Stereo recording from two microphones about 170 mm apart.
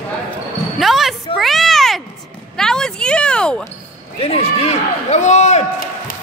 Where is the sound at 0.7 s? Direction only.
Centre (ahead or behind).